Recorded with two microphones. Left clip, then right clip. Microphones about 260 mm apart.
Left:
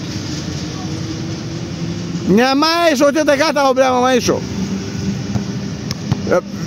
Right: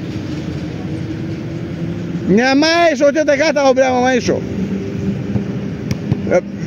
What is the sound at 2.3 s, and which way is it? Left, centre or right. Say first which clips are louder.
Speech: right 1 dB; left.